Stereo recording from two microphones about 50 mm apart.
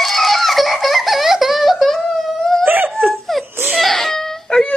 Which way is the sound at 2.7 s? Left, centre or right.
Right.